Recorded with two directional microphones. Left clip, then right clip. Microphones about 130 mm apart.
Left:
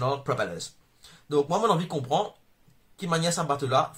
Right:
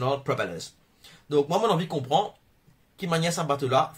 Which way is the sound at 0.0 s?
15° right (ahead or behind).